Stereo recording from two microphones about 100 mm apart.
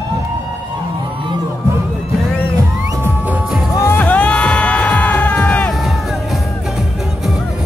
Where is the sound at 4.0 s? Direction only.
15° left (ahead or behind).